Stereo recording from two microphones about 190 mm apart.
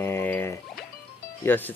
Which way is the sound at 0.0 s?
10° left (ahead or behind).